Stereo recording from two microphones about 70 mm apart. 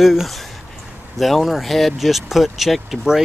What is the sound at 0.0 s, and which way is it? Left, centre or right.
Speech, centre.